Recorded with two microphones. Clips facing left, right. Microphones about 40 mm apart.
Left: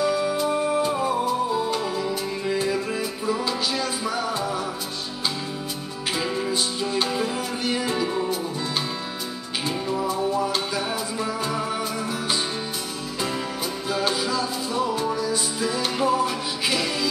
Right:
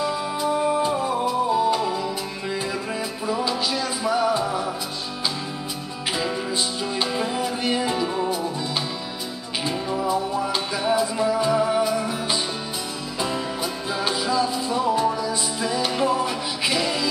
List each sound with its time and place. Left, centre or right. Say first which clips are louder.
4.4 s music: right 2 dB; right
7.7 s music: even; centre
10.0 s music: even; right
14.2 s music: right 3 dB; right